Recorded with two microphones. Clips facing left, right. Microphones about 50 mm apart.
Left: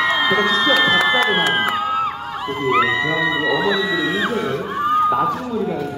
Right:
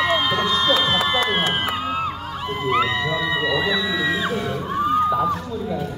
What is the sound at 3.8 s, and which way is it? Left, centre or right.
Music, centre.